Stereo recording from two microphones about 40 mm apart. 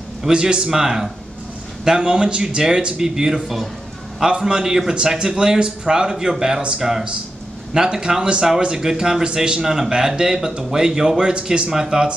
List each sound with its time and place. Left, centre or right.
0.3 s speech: right